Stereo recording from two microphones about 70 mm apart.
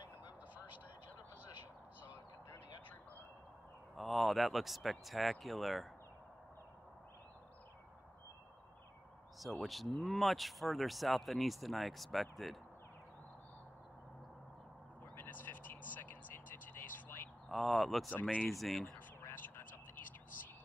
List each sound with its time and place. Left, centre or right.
3.9 s speech: centre
9.4 s speech: centre
15.1 s vehicle: left
17.5 s speech: centre
18.9 s a sound: left